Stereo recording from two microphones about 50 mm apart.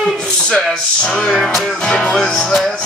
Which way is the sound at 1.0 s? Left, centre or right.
Centre.